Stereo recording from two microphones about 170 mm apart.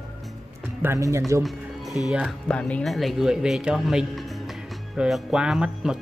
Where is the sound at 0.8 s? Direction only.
15° right (ahead or behind).